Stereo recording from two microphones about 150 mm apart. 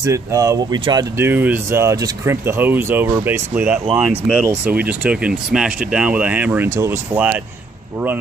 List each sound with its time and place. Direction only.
0.0 s speech: 20° right (ahead or behind)
1.1 s speech: 15° right (ahead or behind)